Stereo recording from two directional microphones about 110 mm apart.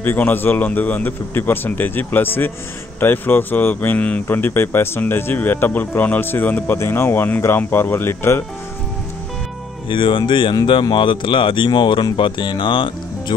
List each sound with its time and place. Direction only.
0.0 s speech: 20° left (ahead or behind)
9.8 s speech: 50° left (ahead or behind)